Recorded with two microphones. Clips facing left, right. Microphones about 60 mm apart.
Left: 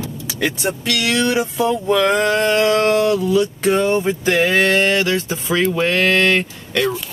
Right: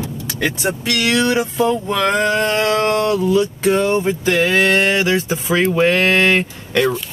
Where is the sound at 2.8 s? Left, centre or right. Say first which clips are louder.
Left 1 dB; centre.